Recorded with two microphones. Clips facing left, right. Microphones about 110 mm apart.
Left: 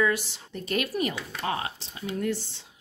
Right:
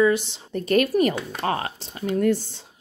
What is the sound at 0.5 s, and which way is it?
Speech, 50° right (ahead or behind).